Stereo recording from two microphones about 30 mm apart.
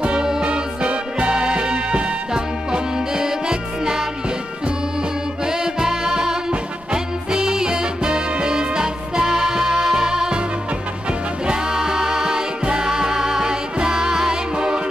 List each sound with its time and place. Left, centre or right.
0.4 s music: right
1.3 s music: right
2.3 s music: right
5.4 s music: centre
9.2 s music: centre
11.4 s music: right